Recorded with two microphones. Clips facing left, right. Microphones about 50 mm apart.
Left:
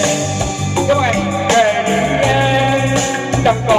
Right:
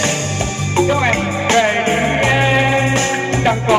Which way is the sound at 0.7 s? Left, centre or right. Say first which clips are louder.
Left 1 dB; right.